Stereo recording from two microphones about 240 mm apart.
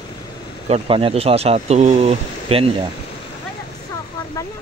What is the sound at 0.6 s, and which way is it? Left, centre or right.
Speech, right.